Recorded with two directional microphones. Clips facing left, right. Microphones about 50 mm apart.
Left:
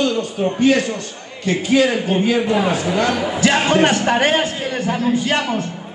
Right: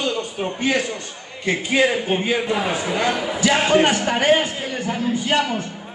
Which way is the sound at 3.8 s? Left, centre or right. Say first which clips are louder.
Left 3 dB; left.